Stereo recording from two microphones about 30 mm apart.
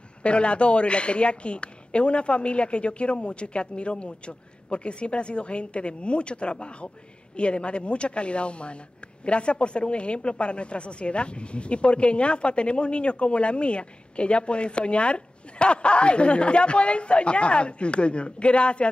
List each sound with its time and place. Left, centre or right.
0.2 s a man's voice: left